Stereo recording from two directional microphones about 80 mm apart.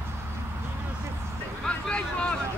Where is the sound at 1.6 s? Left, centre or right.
Centre.